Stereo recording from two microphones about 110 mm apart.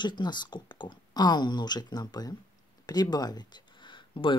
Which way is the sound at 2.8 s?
40° left (ahead or behind).